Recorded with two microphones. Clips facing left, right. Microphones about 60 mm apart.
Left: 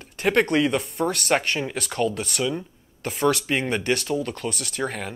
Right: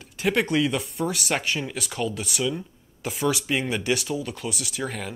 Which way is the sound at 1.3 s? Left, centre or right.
Left.